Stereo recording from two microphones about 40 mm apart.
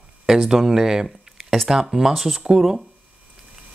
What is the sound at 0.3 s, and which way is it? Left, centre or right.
Speech, centre.